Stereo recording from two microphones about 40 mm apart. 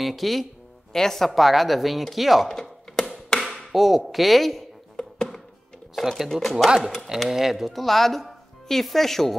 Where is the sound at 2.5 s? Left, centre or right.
Centre.